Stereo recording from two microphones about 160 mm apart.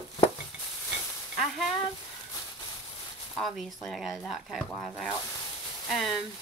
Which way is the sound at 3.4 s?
Centre (ahead or behind).